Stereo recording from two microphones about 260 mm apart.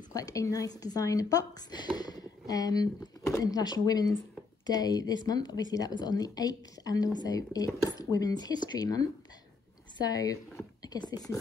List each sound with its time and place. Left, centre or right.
0.1 s speech: centre